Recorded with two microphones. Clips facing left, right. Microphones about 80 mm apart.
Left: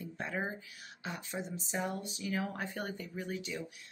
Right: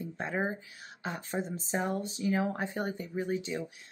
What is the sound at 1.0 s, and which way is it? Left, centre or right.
Speech, right.